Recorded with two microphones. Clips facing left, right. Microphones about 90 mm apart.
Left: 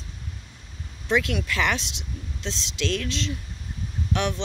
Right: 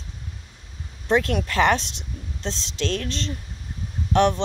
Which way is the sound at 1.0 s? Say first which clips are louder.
Right 3 dB; 45° right (ahead or behind).